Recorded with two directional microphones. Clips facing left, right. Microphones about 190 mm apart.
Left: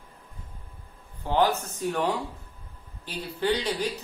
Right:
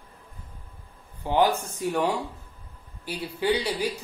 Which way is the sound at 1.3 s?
15° right (ahead or behind).